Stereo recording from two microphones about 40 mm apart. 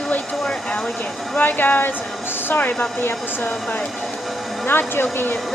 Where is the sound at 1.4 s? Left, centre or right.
Left.